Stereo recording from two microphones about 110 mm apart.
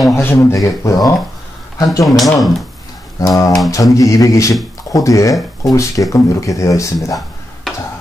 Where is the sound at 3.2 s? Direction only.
30° left (ahead or behind).